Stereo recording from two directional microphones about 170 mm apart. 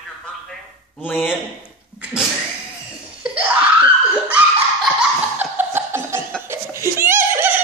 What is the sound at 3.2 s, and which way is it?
Laughter, 10° right (ahead or behind).